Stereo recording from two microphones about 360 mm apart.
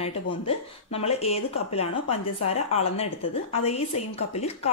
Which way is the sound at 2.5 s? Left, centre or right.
Centre.